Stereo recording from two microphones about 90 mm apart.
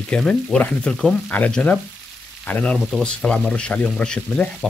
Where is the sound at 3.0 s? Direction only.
10° left (ahead or behind).